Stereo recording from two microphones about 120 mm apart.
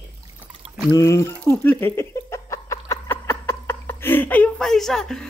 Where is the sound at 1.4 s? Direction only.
20° left (ahead or behind).